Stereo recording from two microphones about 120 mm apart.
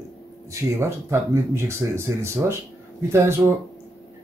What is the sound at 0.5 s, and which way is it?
Speech, 25° right (ahead or behind).